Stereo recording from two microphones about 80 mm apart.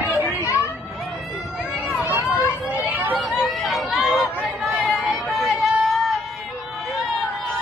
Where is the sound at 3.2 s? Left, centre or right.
Centre.